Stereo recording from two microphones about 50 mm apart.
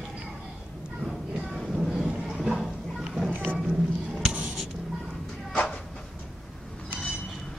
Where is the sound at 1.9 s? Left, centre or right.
Centre.